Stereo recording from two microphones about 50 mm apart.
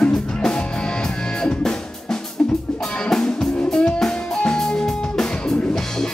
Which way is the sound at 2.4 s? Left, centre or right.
Left.